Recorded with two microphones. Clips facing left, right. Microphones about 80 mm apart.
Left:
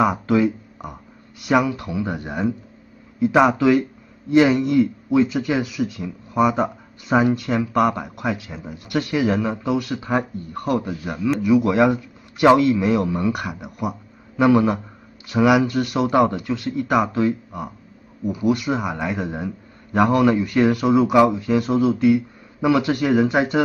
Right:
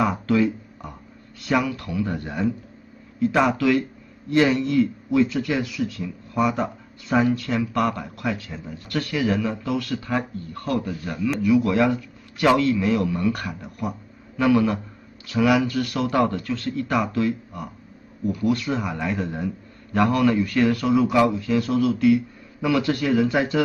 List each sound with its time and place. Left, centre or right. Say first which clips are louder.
0.0 s a man's voice: left 3 dB; centre